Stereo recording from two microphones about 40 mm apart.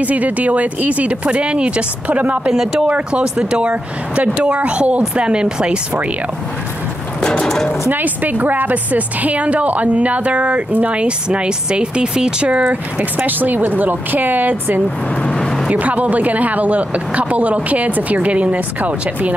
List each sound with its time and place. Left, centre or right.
0.0 s a woman's voice: right
2.5 s speech: centre
2.9 s a woman's voice: right
7.2 s bird: centre
7.9 s a woman's voice: right
13.2 s a woman's voice: right